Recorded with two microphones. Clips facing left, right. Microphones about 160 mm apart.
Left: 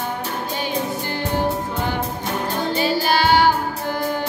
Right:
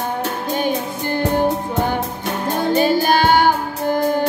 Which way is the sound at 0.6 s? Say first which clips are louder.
Right 3 dB; 50° right (ahead or behind).